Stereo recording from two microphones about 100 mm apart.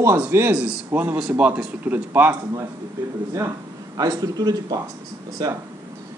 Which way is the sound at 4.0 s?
40° right (ahead or behind).